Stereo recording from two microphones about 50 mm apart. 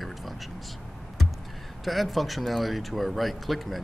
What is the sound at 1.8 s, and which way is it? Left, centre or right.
Speech, centre.